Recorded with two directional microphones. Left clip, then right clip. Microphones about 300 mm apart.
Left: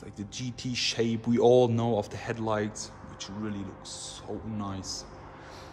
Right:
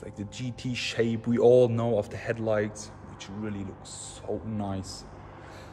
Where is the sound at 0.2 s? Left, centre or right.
Centre.